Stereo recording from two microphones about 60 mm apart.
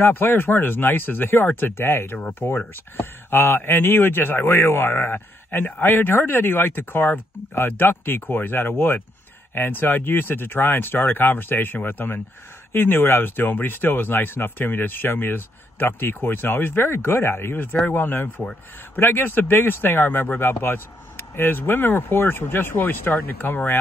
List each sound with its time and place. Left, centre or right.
0.0 s speech: left